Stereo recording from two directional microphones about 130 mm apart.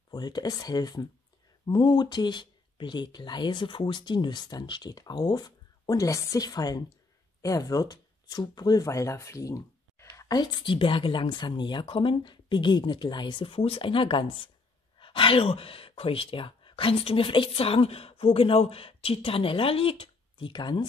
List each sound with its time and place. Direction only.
0.1 s speech: 30° left (ahead or behind)